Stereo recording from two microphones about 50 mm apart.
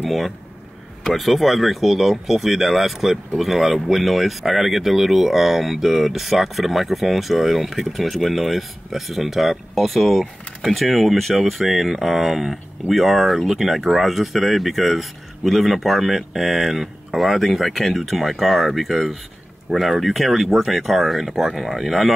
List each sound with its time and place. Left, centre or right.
0.0 s speech: centre